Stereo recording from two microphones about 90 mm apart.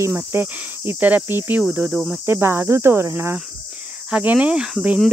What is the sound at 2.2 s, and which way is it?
Speech, 25° right (ahead or behind).